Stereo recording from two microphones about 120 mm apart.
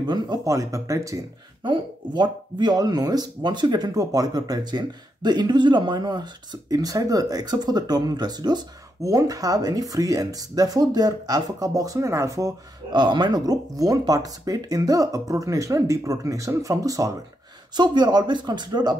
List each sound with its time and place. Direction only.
0.0 s speech: 35° right (ahead or behind)
1.6 s speech: 40° right (ahead or behind)